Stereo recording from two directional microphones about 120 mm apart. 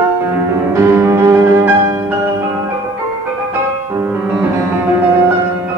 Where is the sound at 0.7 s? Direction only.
20° right (ahead or behind).